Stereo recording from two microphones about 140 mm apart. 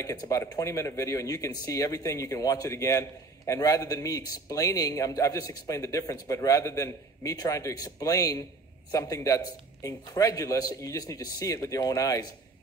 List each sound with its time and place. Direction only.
0.0 s speech: 25° left (ahead or behind)